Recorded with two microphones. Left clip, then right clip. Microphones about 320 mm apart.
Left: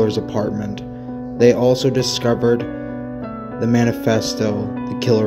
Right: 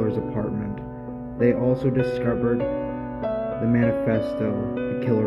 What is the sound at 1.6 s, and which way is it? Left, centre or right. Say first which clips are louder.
Music: left 6 dB; centre.